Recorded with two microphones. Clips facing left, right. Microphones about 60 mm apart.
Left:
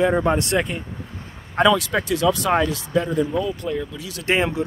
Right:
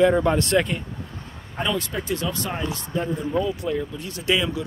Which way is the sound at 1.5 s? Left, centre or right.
Left.